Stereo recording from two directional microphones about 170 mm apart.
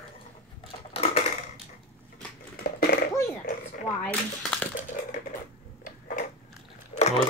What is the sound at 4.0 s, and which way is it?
Speech, 10° left (ahead or behind).